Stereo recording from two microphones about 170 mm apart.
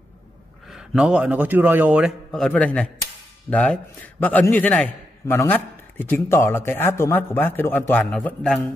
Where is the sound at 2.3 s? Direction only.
5° left (ahead or behind).